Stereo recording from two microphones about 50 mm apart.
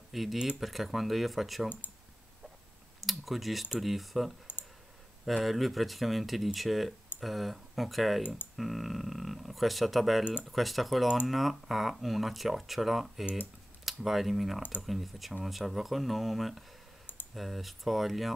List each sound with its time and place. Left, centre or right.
0.1 s speech: centre
3.0 s speech: centre
4.5 s clicking: left
5.2 s speech: centre